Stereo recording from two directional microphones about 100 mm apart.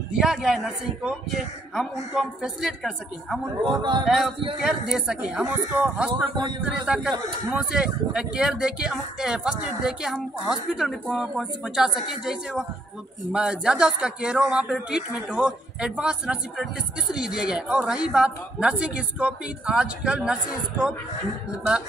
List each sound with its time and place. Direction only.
0.1 s a man's voice: 5° right (ahead or behind)
3.6 s speech: 50° right (ahead or behind)
4.6 s a man's voice: 5° right (ahead or behind)